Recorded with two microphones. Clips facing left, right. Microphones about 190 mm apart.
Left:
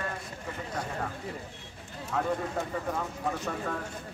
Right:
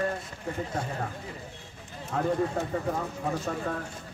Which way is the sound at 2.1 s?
40° right (ahead or behind).